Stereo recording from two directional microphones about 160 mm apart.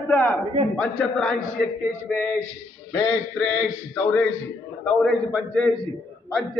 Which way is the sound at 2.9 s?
10° left (ahead or behind).